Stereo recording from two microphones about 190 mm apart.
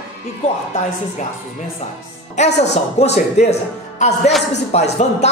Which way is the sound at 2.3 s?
35° left (ahead or behind).